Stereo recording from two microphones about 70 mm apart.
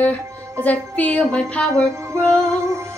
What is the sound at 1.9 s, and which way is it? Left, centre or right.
Music, right.